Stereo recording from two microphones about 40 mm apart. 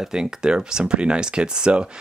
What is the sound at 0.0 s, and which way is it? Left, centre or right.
Speech, centre.